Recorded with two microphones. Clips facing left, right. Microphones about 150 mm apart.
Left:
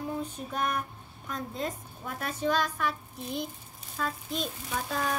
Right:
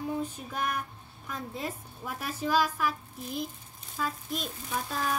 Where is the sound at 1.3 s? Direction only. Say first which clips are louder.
Left 2 dB; 5° right (ahead or behind).